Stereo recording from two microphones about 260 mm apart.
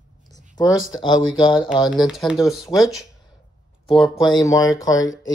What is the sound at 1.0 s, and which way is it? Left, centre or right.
Speech, centre.